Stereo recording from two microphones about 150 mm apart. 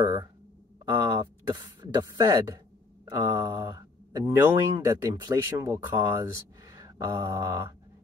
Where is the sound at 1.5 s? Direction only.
25° right (ahead or behind).